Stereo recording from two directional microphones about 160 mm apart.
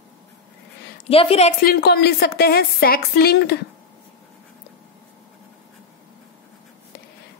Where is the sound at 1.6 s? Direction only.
75° left (ahead or behind).